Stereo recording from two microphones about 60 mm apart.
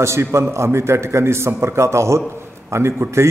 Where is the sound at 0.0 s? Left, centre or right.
Right.